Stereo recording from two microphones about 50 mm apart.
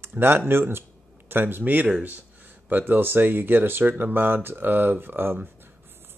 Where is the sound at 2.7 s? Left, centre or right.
Right.